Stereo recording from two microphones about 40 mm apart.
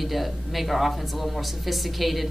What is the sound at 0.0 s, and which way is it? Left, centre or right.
Speech, centre.